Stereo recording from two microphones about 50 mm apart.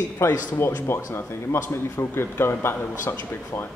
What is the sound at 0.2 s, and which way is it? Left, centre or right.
Speech, left.